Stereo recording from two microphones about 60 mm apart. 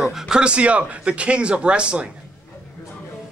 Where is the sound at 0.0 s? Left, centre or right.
Centre.